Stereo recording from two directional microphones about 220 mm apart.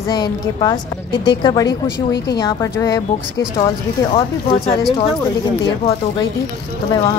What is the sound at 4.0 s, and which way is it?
Speech, 20° left (ahead or behind).